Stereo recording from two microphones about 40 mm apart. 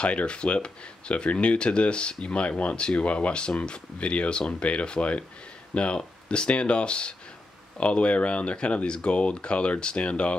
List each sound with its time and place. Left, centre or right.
0.0 s speech: left